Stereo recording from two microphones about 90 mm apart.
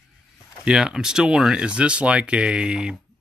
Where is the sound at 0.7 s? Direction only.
5° right (ahead or behind).